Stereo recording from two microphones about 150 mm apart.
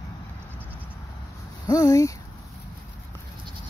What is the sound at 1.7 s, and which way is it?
Speech, 25° left (ahead or behind).